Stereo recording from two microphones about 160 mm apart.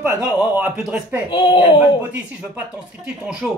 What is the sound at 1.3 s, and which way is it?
Speech, 30° left (ahead or behind).